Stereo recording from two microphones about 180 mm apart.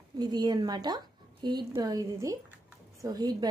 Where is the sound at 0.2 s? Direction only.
20° right (ahead or behind).